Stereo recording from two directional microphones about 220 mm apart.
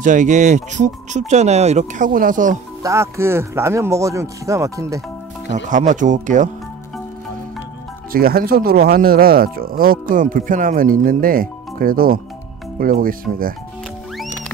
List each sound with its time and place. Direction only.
0.0 s speech: 35° right (ahead or behind)
2.8 s speech: 15° right (ahead or behind)
5.7 s speech: 35° right (ahead or behind)
8.1 s speech: 40° right (ahead or behind)